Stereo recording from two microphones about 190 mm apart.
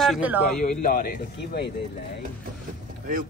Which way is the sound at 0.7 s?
45° left (ahead or behind).